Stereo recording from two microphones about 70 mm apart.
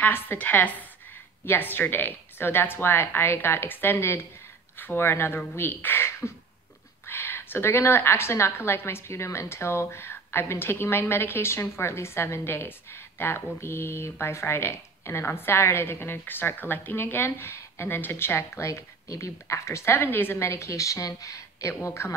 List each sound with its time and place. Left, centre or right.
0.0 s a woman's voice: left
18.7 s a woman's voice: left
21.8 s a woman's voice: left